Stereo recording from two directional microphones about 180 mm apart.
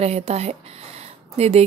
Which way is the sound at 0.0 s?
35° right (ahead or behind).